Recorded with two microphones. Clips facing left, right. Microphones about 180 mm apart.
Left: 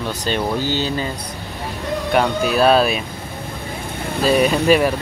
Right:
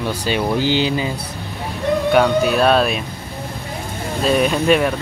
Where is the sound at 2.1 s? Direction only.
Centre (ahead or behind).